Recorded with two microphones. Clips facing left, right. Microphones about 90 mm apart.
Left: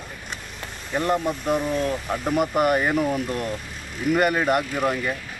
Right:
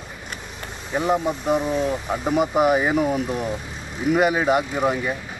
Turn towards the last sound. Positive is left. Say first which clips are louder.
# right 2 dB
turn(degrees=-5)  # may be behind; listen again after turning